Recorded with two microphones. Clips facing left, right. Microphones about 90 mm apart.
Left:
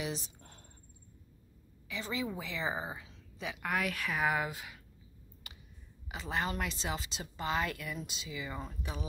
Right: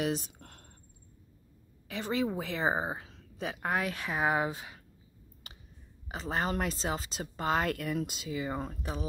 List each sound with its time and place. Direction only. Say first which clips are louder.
0.0 s speech: right 7 dB; 50° right (ahead or behind)
0.4 s a sound: right 3 dB; 65° right (ahead or behind)
1.9 s a woman's voice: right 6 dB; 45° right (ahead or behind)
6.0 s a woman's voice: right 3 dB; 40° right (ahead or behind)